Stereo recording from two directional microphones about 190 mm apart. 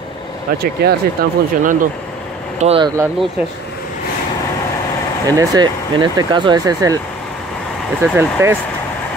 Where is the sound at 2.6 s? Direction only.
30° right (ahead or behind).